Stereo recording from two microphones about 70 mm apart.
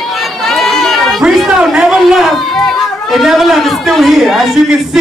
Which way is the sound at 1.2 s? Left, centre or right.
Centre.